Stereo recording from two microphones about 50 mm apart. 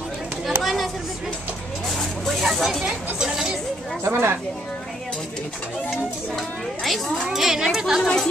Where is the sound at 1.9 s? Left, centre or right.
Centre.